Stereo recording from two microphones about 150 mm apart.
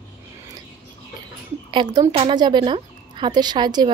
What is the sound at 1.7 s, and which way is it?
Speech, 30° right (ahead or behind).